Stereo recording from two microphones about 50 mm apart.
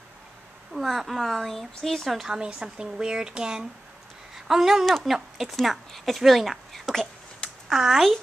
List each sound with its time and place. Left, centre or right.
0.7 s speech: centre
2.0 s speech: centre
2.3 s speech: centre
4.8 s speech: centre
7.7 s speech: centre